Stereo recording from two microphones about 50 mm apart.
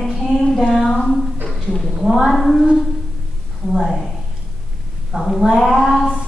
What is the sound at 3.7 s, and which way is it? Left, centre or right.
Speech, centre.